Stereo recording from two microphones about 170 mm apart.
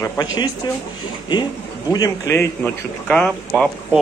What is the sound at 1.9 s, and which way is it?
Speech, 20° left (ahead or behind).